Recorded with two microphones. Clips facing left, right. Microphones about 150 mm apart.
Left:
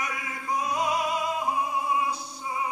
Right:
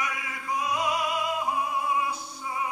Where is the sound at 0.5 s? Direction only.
40° left (ahead or behind).